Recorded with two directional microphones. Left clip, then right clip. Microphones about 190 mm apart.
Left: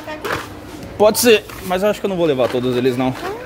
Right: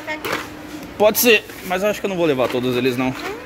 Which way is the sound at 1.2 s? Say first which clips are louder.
Left 2 dB; 15° left (ahead or behind).